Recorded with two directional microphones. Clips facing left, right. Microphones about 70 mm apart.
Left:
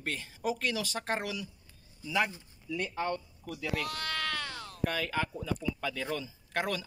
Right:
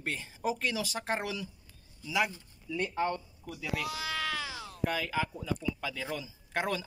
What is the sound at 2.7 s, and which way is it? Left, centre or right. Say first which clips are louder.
Speech: right 2 dB; centre.